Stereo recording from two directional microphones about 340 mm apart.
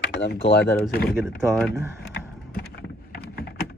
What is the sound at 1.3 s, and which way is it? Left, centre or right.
Speech, centre.